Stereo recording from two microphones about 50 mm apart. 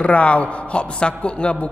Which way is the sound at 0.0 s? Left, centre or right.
Left.